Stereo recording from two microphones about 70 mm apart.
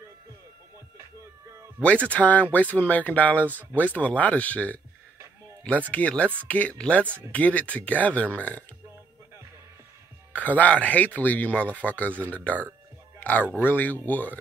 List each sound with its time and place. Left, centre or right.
1.8 s speech: centre
10.3 s speech: left